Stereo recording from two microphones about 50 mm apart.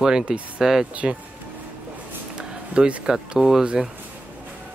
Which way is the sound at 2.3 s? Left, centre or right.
Centre.